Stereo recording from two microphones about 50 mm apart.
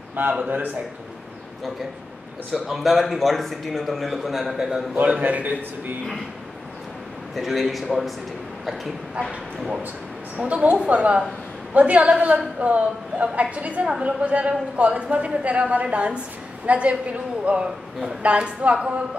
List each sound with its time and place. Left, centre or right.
0.3 s a woman's voice: right
2.5 s a man's voice: centre
4.9 s a man's voice: right
7.3 s a man's voice: centre
10.5 s a man's voice: right